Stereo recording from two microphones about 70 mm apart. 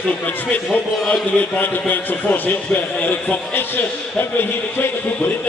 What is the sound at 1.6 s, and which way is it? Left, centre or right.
A man's voice, left.